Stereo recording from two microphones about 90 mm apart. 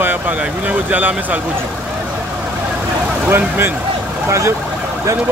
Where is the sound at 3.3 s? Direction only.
25° right (ahead or behind).